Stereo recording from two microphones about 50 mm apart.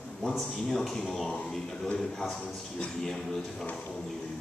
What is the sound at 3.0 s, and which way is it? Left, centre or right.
Speech, centre.